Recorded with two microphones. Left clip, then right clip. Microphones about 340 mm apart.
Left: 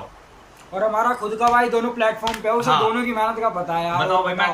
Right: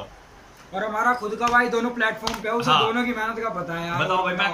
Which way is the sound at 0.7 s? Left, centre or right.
Centre.